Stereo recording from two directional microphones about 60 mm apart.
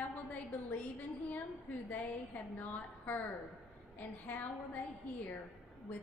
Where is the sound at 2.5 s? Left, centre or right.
Left.